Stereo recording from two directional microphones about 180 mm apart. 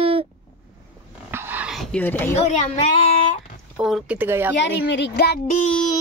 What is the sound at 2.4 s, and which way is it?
Speech, 40° left (ahead or behind).